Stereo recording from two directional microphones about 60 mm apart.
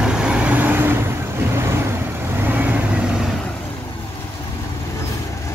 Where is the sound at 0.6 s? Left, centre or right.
Right.